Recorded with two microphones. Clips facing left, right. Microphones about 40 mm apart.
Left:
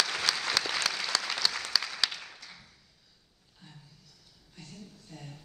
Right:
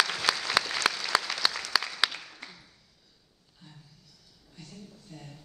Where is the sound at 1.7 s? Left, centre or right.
Right.